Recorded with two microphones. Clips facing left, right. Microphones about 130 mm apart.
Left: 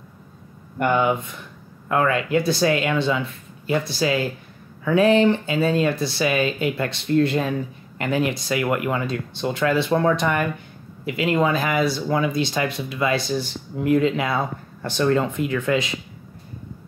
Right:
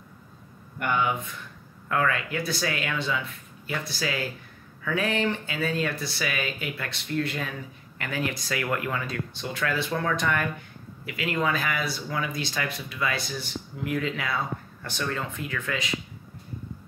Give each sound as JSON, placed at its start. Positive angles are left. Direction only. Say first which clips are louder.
{"t": 0.7, "sound": "speech", "louder": "left 7 dB", "side_deg": 30}